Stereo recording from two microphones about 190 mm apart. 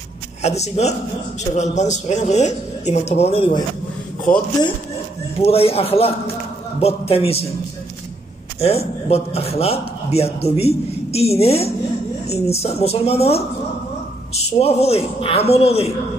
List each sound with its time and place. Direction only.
0.4 s a man's voice: 35° left (ahead or behind)
5.4 s a man's voice: 30° left (ahead or behind)
8.5 s a man's voice: 35° left (ahead or behind)